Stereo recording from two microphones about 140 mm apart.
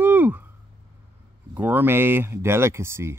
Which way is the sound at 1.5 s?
15° right (ahead or behind).